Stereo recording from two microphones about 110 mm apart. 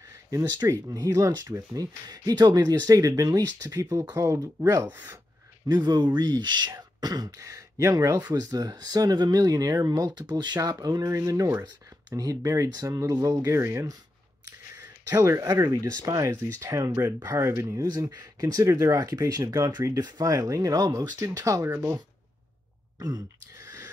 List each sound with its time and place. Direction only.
0.3 s speech: 30° right (ahead or behind)
4.9 s speech: 15° right (ahead or behind)
5.7 s speech: 40° right (ahead or behind); by 13.9 s 25° right (ahead or behind)
15.0 s speech: 25° right (ahead or behind)
22.9 s a sound: 35° right (ahead or behind)